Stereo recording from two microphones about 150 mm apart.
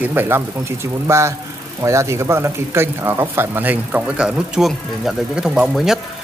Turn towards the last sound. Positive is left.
turn(degrees=-5)  # may be behind; listen again after turning